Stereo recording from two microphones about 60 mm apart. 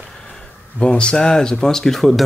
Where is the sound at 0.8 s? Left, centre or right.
Centre.